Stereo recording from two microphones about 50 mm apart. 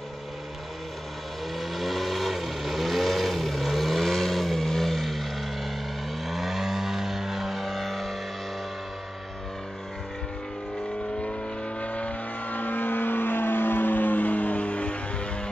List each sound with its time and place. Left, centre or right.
1.6 s vehicle: centre
11.8 s vehicle: left